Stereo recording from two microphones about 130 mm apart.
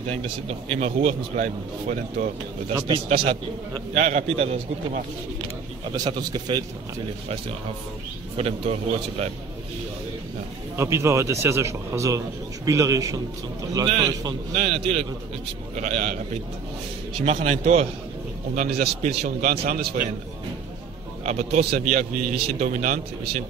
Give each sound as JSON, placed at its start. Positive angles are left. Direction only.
{"t": 0.0, "sound": "a man's voice", "side_deg": -50}
{"t": 3.9, "sound": "a man's voice", "side_deg": -60}
{"t": 5.9, "sound": "a man's voice", "side_deg": -35}
{"t": 8.4, "sound": "a man's voice", "side_deg": -55}
{"t": 10.8, "sound": "a man's voice", "side_deg": -20}
{"t": 13.8, "sound": "a man's voice", "side_deg": -45}
{"t": 17.2, "sound": "a man's voice", "side_deg": -55}
{"t": 18.5, "sound": "a man's voice", "side_deg": -70}
{"t": 21.3, "sound": "a man's voice", "side_deg": -60}